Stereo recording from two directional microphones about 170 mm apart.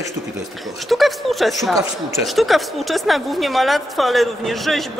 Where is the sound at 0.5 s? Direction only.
Centre (ahead or behind).